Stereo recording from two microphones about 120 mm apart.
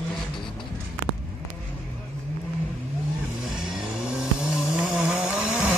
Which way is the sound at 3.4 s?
5° right (ahead or behind).